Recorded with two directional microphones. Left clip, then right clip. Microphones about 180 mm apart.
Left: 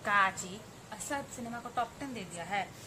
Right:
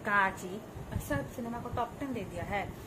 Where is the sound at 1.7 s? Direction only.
15° left (ahead or behind).